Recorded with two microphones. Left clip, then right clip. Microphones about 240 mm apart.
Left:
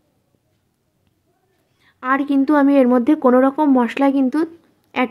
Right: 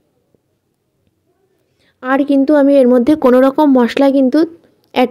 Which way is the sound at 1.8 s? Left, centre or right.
Centre.